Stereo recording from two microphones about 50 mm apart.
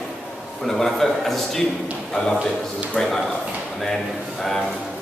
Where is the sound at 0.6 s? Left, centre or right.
Centre.